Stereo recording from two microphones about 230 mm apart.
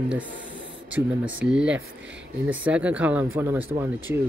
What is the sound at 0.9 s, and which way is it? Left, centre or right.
Speech, centre.